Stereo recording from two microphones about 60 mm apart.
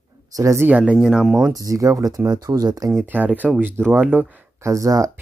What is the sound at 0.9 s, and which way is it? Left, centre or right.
Speech, centre.